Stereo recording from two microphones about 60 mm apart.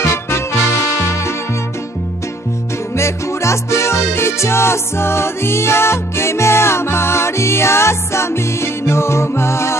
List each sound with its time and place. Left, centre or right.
0.0 s music: left
3.0 s music: left